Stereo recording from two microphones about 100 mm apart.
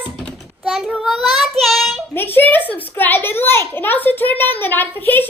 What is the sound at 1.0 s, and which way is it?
Child singing, 5° right (ahead or behind).